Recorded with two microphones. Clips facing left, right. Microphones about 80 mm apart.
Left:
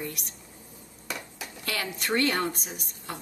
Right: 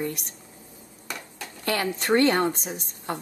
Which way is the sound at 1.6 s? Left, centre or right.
Right.